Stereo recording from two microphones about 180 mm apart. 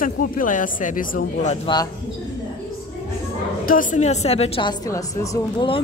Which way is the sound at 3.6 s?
45° left (ahead or behind).